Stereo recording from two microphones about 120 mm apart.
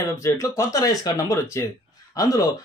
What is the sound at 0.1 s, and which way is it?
Speech, 25° left (ahead or behind).